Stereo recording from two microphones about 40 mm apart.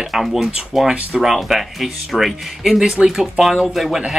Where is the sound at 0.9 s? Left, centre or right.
Right.